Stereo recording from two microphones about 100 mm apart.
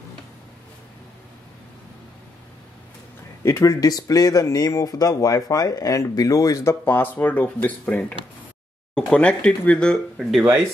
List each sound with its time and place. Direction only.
3.4 s speech: 35° left (ahead or behind); by 10.4 s centre (ahead or behind)